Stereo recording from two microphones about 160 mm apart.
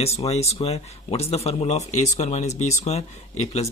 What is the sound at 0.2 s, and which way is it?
Speech, 40° left (ahead or behind).